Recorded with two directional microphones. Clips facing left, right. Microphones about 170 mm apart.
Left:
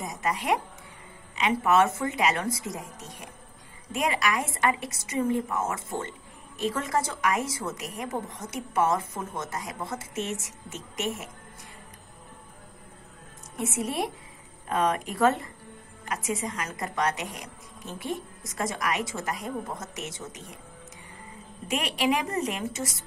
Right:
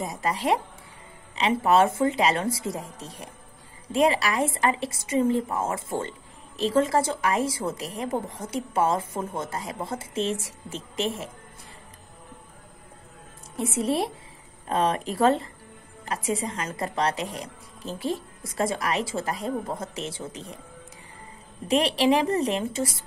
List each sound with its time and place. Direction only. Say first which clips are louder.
0.0 s a woman's voice: right 3 dB; 30° right (ahead or behind)
13.6 s a woman's voice: right 4 dB; 30° right (ahead or behind)
21.6 s a woman's voice: right 6 dB; 30° right (ahead or behind)